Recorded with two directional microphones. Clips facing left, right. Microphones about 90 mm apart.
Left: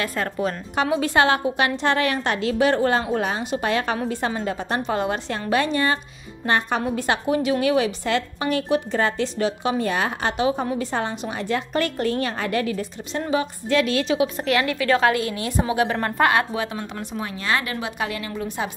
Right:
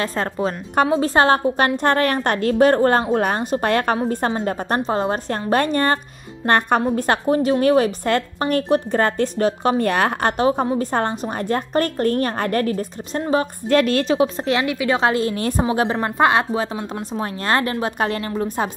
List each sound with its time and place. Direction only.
0.0 s a woman's voice: 30° right (ahead or behind)
5.5 s a woman's voice: 50° right (ahead or behind)
7.0 s a woman's voice: 40° right (ahead or behind)
16.0 s a woman's voice: 25° right (ahead or behind); by 18.7 s 40° right (ahead or behind)